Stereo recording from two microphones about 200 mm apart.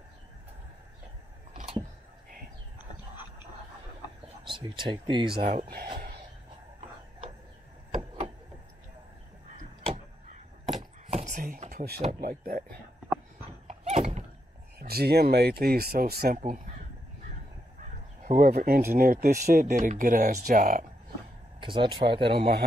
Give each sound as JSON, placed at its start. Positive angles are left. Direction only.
{"t": 4.5, "sound": "speech", "side_deg": -25}
{"t": 5.4, "sound": "speech", "side_deg": -45}
{"t": 9.6, "sound": "a sound", "side_deg": -35}
{"t": 11.1, "sound": "chopping", "side_deg": -35}
{"t": 12.1, "sound": "speech", "side_deg": -45}
{"t": 13.7, "sound": "horse", "side_deg": -35}
{"t": 14.8, "sound": "speech", "side_deg": -50}
{"t": 17.8, "sound": "a sound", "side_deg": -40}
{"t": 18.9, "sound": "speech", "side_deg": -45}
{"t": 21.5, "sound": "speech", "side_deg": -25}
{"t": 22.1, "sound": "speech", "side_deg": -55}